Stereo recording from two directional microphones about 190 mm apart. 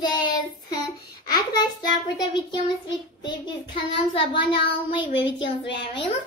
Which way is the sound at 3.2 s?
25° left (ahead or behind).